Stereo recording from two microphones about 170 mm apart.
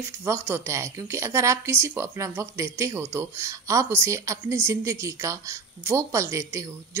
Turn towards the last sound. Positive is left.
turn(degrees=-15)  # may be behind; listen again after turning